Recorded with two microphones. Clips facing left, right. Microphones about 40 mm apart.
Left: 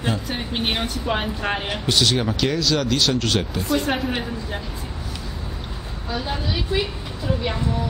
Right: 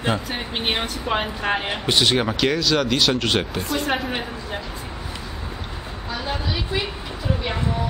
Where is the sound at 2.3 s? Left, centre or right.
Centre.